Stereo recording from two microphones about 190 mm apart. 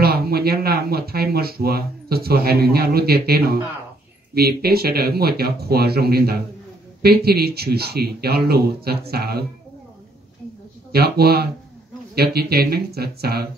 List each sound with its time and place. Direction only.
0.0 s speech: 55° right (ahead or behind)
10.9 s speech: 55° right (ahead or behind)